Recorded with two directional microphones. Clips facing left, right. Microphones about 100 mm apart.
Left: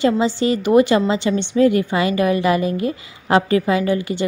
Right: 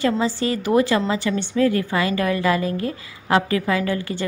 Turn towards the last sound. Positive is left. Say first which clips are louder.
# left 4 dB
turn(degrees=20)  # may be behind; listen again after turning